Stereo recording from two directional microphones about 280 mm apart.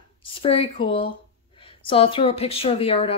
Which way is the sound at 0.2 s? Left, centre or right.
Centre.